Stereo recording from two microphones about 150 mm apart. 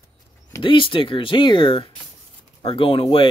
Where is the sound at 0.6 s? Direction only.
35° left (ahead or behind).